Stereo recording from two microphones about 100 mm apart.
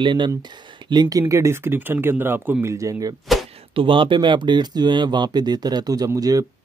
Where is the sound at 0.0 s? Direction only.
50° right (ahead or behind).